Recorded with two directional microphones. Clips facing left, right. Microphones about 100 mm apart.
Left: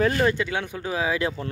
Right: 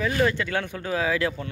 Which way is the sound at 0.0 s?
45° left (ahead or behind).